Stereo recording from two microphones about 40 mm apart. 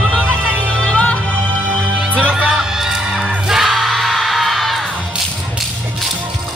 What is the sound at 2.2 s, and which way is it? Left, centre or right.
Music, right.